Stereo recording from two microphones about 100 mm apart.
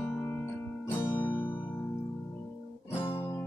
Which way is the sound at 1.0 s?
20° left (ahead or behind).